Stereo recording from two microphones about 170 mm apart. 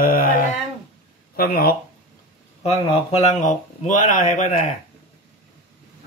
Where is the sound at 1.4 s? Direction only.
60° left (ahead or behind).